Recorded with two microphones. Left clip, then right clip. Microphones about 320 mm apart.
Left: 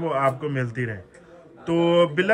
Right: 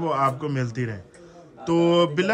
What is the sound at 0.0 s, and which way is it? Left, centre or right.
Speech, centre.